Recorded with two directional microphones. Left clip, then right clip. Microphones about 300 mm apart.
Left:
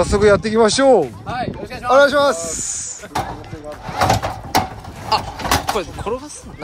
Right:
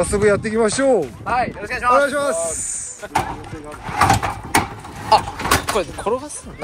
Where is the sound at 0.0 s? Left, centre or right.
Centre.